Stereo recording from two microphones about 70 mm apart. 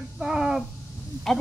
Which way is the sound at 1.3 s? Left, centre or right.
Centre.